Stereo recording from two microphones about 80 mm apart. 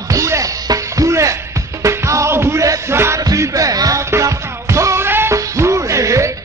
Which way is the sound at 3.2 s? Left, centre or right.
Right.